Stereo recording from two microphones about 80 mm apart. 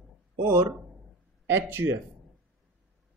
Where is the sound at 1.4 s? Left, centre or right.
Right.